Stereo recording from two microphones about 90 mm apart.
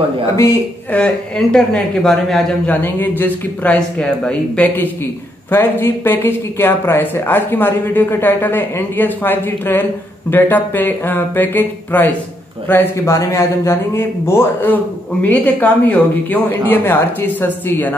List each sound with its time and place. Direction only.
0.9 s speech: 10° left (ahead or behind)
2.6 s speech: 20° left (ahead or behind)
13.1 s speech: 35° left (ahead or behind)